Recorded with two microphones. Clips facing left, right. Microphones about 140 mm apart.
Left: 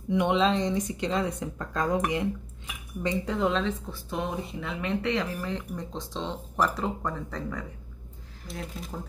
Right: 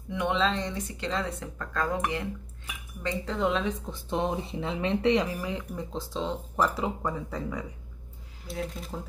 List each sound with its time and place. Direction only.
0.1 s speech: 20° left (ahead or behind)
3.3 s speech: centre (ahead or behind)
3.6 s speech: 20° right (ahead or behind); by 8.9 s centre (ahead or behind)